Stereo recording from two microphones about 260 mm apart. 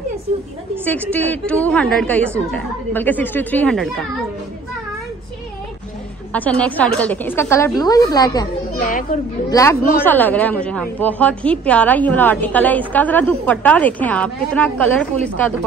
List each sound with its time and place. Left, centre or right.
1.1 s a woman's voice: centre
6.3 s a woman's voice: centre
8.8 s a child's voice: left
9.5 s a woman's voice: centre